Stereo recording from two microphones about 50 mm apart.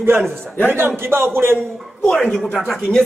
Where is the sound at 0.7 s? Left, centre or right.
Right.